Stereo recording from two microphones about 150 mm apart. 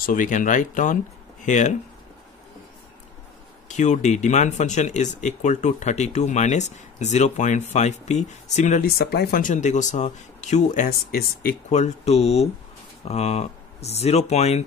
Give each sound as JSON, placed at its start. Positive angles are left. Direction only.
{"t": 0.0, "sound": "speech", "side_deg": 60}
{"t": 3.6, "sound": "speech", "side_deg": 50}
{"t": 8.8, "sound": "speech", "side_deg": 90}
{"t": 10.9, "sound": "speech", "side_deg": 90}
{"t": 11.7, "sound": "speech", "side_deg": 45}